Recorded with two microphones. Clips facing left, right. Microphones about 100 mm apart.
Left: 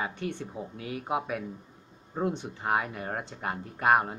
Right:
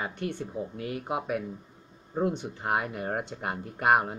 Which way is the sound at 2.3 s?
10° right (ahead or behind).